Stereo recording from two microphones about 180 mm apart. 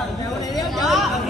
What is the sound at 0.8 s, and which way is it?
Chatter, centre (ahead or behind).